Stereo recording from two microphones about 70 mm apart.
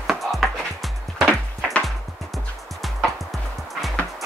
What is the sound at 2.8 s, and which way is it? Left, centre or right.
Music, centre.